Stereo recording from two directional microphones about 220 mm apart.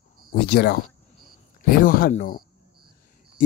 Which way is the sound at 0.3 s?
45° left (ahead or behind).